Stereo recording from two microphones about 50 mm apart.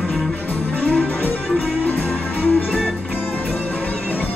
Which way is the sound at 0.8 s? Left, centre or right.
Left.